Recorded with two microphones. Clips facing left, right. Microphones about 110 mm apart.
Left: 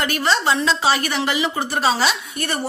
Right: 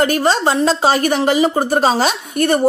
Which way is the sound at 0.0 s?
45° right (ahead or behind).